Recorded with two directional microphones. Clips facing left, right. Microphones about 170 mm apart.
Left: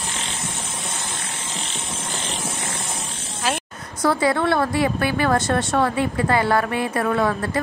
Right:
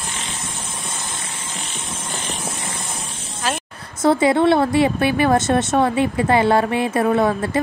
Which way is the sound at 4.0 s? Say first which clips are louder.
Right 4 dB; 25° right (ahead or behind).